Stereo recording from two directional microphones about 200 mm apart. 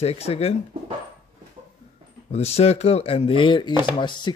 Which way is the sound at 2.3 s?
30° left (ahead or behind).